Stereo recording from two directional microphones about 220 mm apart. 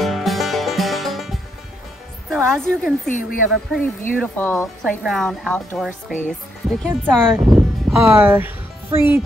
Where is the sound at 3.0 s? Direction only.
35° left (ahead or behind).